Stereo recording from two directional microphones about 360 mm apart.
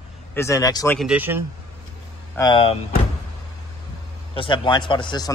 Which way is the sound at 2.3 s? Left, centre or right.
Centre.